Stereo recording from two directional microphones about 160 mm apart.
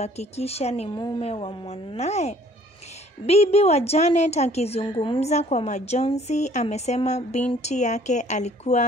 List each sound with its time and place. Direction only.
0.0 s a woman's voice: 40° left (ahead or behind)
0.9 s a woman's voice: 25° left (ahead or behind); by 8.8 s 45° left (ahead or behind)